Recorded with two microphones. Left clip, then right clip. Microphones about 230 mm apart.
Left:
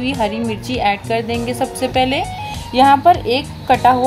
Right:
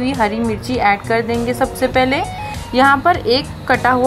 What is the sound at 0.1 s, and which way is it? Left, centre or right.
A woman's voice, centre.